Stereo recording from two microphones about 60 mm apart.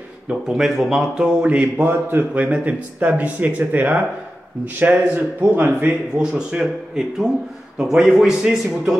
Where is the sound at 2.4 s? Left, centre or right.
Right.